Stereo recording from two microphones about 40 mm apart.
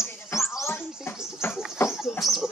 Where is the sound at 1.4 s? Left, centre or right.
Left.